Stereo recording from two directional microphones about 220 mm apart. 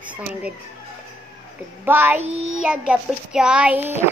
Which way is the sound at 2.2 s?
30° right (ahead or behind).